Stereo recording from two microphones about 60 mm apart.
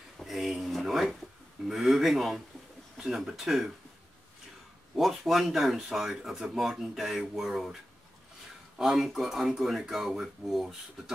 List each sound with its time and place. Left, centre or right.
0.2 s a sound: centre
1.7 s speech: centre
4.9 s speech: centre
8.7 s speech: centre